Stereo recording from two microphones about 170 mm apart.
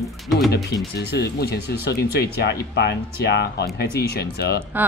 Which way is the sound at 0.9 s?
75° left (ahead or behind).